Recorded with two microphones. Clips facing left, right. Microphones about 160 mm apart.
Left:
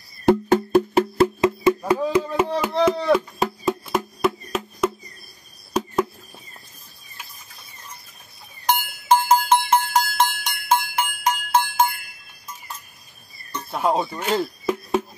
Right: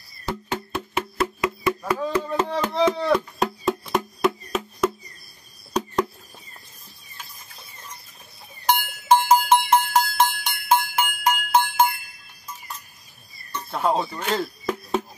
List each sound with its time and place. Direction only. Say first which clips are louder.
0.5 s music: left 13 dB; 40° left (ahead or behind); by 2.0 s 25° left (ahead or behind)
2.0 s chopping: left 3 dB; 10° left (ahead or behind)
5.7 s a sound: left 1 dB; 5° left (ahead or behind)
8.6 s cowbell: even; centre (ahead or behind)
13.7 s music: left 1 dB; 10° left (ahead or behind)
14.0 s a sound: left 3 dB; 5° left (ahead or behind)